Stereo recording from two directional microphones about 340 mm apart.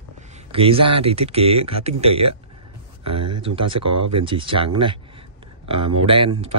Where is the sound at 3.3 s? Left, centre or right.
Centre.